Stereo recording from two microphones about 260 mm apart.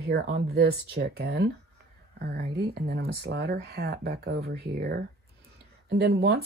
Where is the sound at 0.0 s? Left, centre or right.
Right.